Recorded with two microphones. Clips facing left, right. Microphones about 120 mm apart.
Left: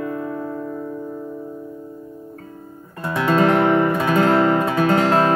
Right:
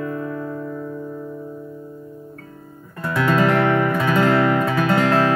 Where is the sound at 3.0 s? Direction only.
25° left (ahead or behind).